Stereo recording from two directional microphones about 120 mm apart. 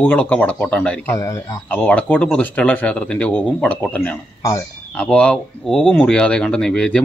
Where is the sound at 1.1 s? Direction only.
30° left (ahead or behind).